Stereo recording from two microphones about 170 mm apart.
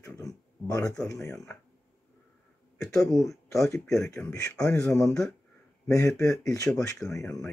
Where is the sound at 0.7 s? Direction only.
20° left (ahead or behind).